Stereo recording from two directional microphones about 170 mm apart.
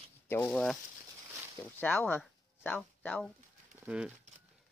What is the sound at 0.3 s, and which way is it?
Speech, 10° left (ahead or behind).